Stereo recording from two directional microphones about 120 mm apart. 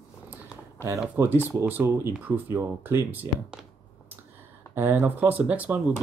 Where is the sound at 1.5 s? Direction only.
20° right (ahead or behind).